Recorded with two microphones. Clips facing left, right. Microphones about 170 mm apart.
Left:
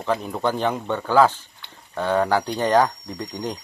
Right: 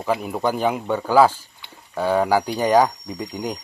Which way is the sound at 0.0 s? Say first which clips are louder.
Right 1 dB; 10° right (ahead or behind).